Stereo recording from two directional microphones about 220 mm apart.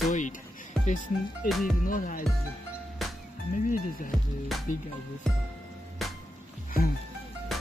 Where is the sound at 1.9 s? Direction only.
35° left (ahead or behind).